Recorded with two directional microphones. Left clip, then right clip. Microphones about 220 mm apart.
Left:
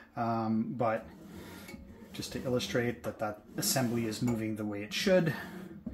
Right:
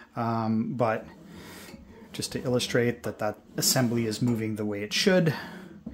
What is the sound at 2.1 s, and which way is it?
Speech, 50° right (ahead or behind).